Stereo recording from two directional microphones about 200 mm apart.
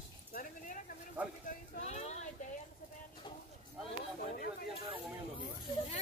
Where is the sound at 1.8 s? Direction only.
35° left (ahead or behind).